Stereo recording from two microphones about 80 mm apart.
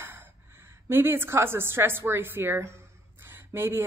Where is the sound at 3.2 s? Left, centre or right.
Right.